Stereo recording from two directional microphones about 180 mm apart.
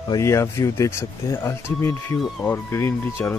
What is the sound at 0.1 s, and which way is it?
Speech, 15° left (ahead or behind).